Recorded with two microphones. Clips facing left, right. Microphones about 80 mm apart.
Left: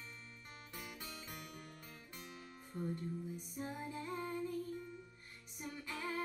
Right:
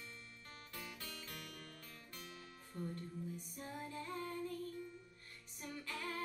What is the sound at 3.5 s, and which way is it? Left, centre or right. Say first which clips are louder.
Female singing: left 5 dB; centre.